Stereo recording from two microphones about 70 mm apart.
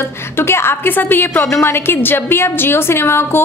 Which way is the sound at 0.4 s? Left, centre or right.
Left.